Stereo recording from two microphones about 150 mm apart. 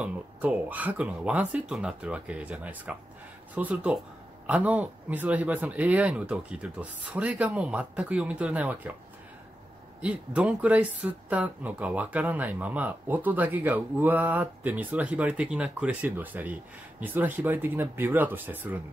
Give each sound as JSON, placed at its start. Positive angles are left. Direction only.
{"t": 0.0, "sound": "speech", "side_deg": -10}
{"t": 10.0, "sound": "speech", "side_deg": -10}